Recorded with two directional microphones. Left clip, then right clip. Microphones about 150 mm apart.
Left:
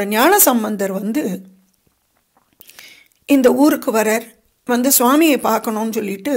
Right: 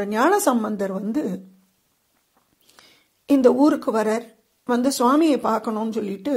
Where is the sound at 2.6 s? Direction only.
5° left (ahead or behind).